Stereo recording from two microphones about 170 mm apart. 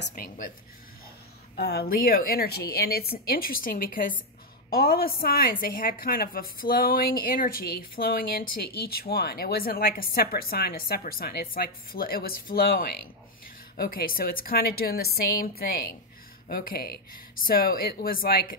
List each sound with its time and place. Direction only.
0.1 s a woman's voice: 55° left (ahead or behind)
1.6 s a woman's voice: 70° left (ahead or behind)